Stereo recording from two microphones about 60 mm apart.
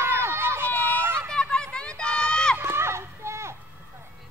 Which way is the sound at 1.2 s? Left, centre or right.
Centre.